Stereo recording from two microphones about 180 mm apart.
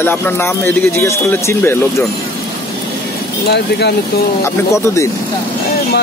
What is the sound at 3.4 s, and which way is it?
Speech, 65° left (ahead or behind).